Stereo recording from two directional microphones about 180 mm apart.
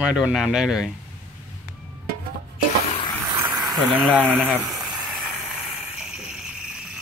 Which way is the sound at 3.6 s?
Centre (ahead or behind).